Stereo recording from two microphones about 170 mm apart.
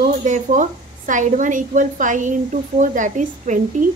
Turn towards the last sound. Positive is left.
turn(degrees=-50)  # may be behind; listen again after turning